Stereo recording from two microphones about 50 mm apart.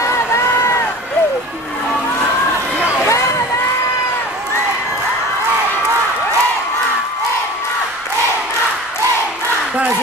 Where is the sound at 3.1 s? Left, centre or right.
Left.